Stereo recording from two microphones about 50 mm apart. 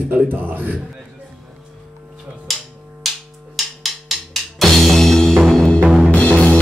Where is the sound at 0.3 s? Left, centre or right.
Right.